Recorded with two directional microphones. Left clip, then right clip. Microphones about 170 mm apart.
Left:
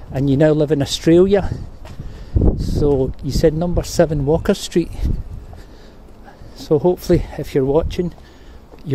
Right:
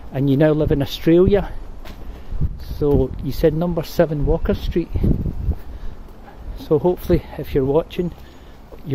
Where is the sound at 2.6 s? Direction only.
20° left (ahead or behind).